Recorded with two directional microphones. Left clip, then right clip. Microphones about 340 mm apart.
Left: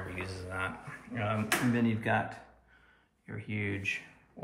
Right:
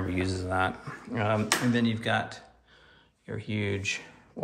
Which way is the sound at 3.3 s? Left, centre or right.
Centre.